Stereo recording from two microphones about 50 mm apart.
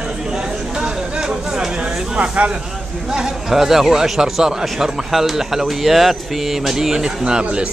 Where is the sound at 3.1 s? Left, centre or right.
Centre.